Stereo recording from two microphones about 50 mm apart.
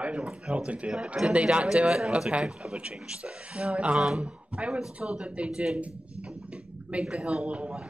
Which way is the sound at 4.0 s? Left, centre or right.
Centre.